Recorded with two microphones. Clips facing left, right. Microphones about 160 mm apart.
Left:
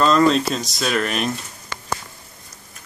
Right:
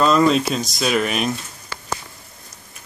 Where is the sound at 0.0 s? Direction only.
5° right (ahead or behind).